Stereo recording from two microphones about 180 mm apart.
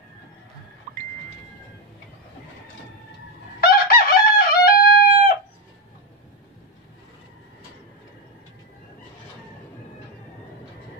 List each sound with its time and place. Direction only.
3.6 s chicken: 55° left (ahead or behind)